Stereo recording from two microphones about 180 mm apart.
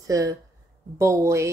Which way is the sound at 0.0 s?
20° right (ahead or behind).